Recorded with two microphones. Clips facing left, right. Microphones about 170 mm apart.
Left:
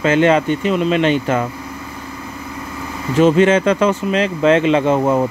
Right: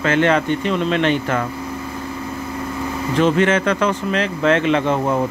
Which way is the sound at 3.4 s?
20° left (ahead or behind).